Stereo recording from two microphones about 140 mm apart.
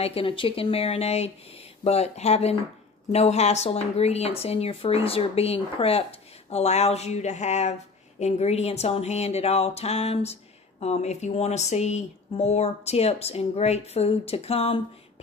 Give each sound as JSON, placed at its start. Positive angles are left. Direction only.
{"t": 0.0, "sound": "speech", "side_deg": 40}